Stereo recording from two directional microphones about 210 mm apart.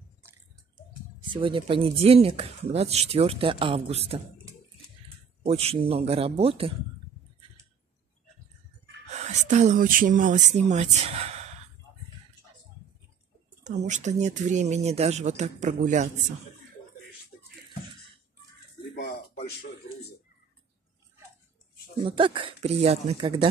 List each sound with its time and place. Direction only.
1.3 s speech: 25° right (ahead or behind)
5.4 s speech: 30° right (ahead or behind)
9.1 s speech: 35° right (ahead or behind)
13.7 s speech: 35° right (ahead or behind)
22.0 s speech: 25° right (ahead or behind)